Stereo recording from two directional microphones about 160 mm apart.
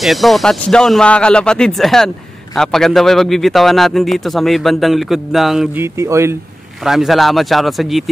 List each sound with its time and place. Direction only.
0.0 s a man's voice: centre (ahead or behind)
5.8 s speech: 20° right (ahead or behind)
6.8 s a man's voice: centre (ahead or behind)